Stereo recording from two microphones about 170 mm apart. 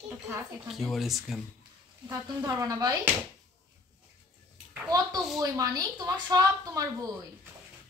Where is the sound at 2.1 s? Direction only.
20° right (ahead or behind).